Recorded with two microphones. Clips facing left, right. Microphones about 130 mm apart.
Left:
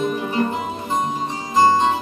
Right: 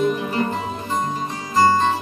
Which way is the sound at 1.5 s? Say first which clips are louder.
Left 1 dB; 20° left (ahead or behind).